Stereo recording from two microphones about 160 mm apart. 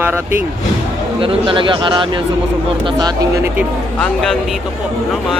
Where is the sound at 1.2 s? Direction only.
35° right (ahead or behind).